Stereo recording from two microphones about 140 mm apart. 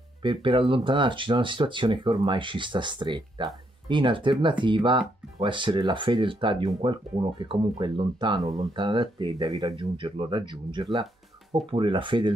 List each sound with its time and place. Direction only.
0.2 s speech: 35° right (ahead or behind)